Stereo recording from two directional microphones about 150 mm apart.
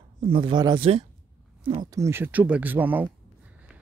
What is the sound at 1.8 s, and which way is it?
Speech, 20° right (ahead or behind).